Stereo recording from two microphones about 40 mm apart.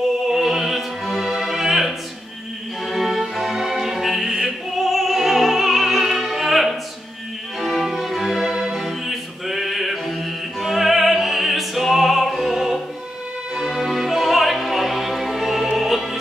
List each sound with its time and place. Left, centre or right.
0.3 s opera: centre
2.9 s music: centre
4.5 s opera: centre
7.8 s music: centre
10.6 s opera: centre
13.6 s music: centre